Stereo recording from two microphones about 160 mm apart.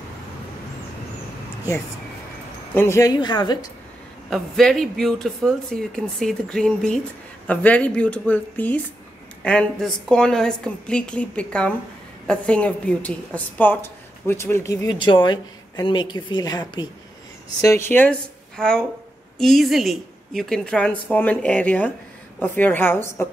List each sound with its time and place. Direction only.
2.7 s a woman's voice: 15° left (ahead or behind)
4.3 s a woman's voice: centre (ahead or behind)